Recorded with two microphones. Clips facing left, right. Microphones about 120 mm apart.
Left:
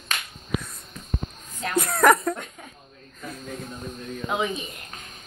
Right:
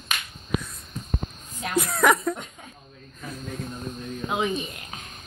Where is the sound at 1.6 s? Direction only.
Centre (ahead or behind).